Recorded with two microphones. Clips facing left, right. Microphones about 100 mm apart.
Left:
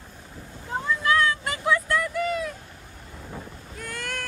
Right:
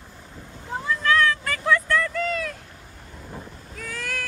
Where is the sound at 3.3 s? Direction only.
Centre (ahead or behind).